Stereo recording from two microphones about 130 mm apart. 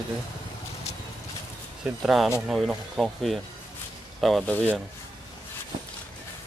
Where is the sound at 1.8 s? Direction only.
5° right (ahead or behind).